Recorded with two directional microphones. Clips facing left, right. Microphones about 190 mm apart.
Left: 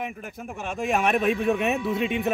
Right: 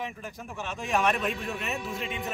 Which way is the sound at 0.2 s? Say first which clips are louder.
Left 3 dB; 55° left (ahead or behind).